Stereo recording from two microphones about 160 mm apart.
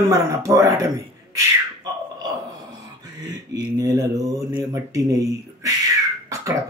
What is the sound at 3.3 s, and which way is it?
Speech, 20° right (ahead or behind).